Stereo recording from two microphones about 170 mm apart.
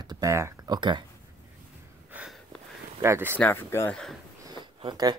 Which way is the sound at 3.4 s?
10° left (ahead or behind).